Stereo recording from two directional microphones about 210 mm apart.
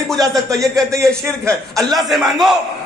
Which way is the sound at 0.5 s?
Centre (ahead or behind).